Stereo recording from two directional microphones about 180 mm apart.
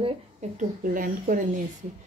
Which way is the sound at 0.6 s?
50° right (ahead or behind).